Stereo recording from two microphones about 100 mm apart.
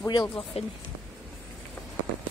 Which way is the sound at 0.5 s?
85° left.